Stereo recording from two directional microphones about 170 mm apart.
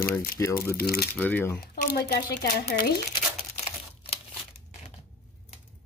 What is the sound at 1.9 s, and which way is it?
Speech, 70° left (ahead or behind).